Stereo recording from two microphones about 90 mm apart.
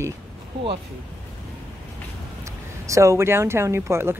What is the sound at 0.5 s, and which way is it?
Speech, 65° right (ahead or behind).